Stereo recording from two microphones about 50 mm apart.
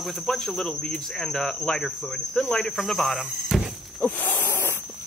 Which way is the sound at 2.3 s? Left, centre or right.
Left.